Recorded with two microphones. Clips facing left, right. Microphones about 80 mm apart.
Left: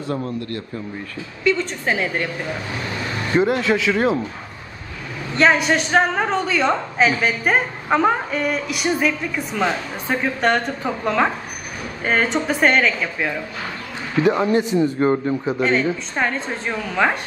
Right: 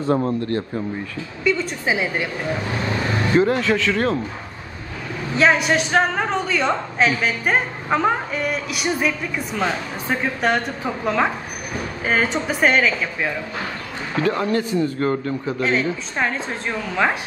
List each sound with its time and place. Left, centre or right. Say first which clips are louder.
0.0 s a man's voice: right 5 dB; right
1.4 s a woman's voice: left 1 dB; centre
3.3 s speech: left 1 dB; centre
5.3 s a woman's voice: left 1 dB; centre
14.2 s speech: left 3 dB; centre
15.6 s a woman's voice: left 1 dB; centre